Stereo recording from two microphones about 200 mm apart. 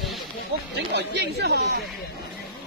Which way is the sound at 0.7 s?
60° right (ahead or behind).